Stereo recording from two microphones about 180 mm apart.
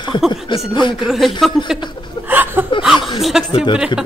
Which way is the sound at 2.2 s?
10° right (ahead or behind).